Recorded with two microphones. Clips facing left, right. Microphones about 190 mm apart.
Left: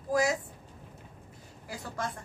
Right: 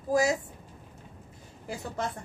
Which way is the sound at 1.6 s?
25° right (ahead or behind).